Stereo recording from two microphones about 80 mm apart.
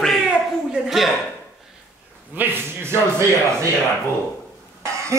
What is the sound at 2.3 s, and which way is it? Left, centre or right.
Speech, right.